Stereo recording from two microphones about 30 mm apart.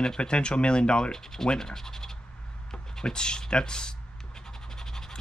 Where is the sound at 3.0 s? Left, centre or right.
Left.